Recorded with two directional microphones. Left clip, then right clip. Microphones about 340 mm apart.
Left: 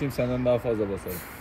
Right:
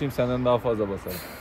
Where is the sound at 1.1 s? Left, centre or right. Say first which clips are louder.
Right 1 dB; right.